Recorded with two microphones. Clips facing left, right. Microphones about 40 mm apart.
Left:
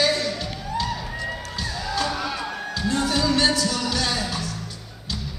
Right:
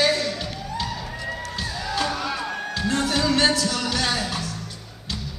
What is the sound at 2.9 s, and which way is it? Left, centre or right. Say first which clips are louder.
Music: even; right.